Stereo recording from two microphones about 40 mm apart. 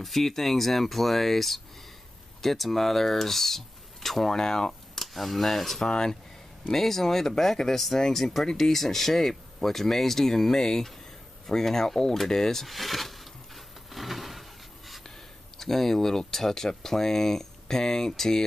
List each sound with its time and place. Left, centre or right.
0.0 s speech: centre
5.9 s speech: centre
6.7 s speech: centre
13.8 s a sound: centre
15.0 s speech: centre